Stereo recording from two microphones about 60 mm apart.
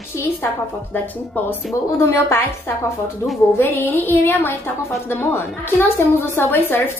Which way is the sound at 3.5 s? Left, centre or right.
Left.